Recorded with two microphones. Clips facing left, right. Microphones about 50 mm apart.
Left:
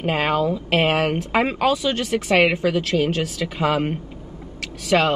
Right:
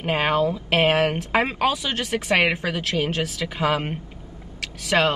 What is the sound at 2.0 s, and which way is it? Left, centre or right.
Speech, centre.